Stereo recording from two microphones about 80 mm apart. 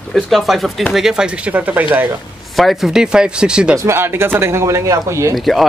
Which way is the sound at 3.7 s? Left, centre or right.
Right.